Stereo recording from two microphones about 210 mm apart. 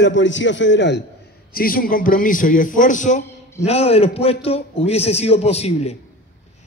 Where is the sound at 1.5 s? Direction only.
45° left (ahead or behind).